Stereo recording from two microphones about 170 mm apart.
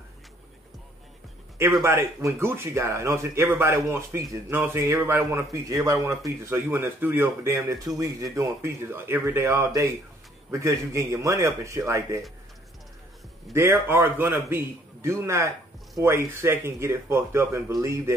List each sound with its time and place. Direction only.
1.8 s speech: 15° right (ahead or behind)
13.5 s speech: 15° right (ahead or behind)